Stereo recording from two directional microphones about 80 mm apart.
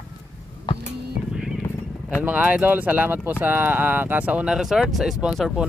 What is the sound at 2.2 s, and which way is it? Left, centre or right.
Speech, centre.